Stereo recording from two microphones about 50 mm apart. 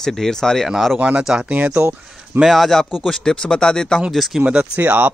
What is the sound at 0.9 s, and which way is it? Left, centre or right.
Speech, right.